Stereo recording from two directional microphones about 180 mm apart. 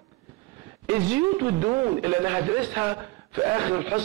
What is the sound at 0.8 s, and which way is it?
Speech, 15° right (ahead or behind).